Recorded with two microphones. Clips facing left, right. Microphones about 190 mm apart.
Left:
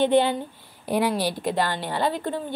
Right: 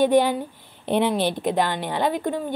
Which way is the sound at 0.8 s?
25° right (ahead or behind).